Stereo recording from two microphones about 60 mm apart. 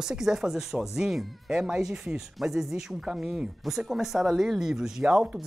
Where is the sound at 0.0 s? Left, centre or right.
Centre.